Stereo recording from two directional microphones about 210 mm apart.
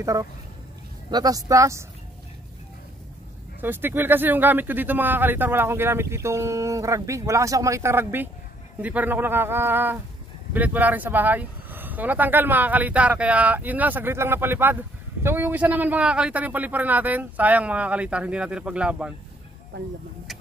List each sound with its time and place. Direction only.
0.0 s speech: 15° right (ahead or behind)
3.6 s speech: 10° right (ahead or behind)